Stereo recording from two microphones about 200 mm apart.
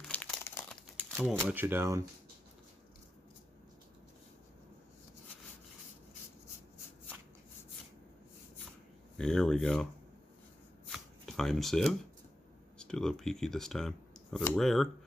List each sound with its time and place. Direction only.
0.0 s crumpling: 5° left (ahead or behind)
1.1 s speech: centre (ahead or behind)
9.1 s speech: 5° left (ahead or behind)
10.9 s shuffling cards: centre (ahead or behind)
12.7 s speech: 5° left (ahead or behind)